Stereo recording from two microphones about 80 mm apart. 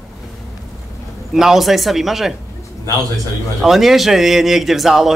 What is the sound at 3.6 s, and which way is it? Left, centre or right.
Speech, centre.